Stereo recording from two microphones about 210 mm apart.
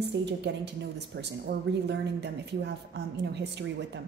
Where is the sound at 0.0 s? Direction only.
55° right (ahead or behind).